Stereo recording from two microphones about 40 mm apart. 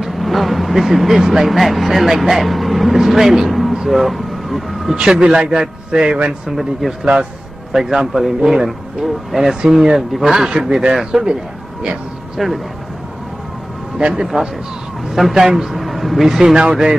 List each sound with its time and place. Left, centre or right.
0.0 s vehicle: centre
1.4 s speech: centre
3.7 s vehicle: centre
4.9 s a man's voice: right
6.5 s a man's voice: centre
9.6 s a man's voice: centre
12.4 s speech: centre
13.9 s a man's voice: right
15.0 s speech: centre
16.3 s a man's voice: centre